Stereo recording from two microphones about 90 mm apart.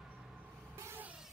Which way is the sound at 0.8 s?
30° right (ahead or behind).